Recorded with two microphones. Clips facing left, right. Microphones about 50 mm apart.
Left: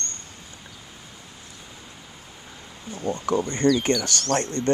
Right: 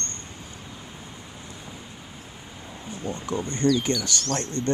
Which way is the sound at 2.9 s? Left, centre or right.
Left.